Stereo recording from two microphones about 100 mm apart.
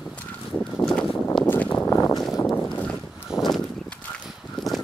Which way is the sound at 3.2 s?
Centre (ahead or behind).